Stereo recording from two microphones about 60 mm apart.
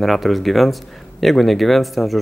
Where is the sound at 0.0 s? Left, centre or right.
Centre.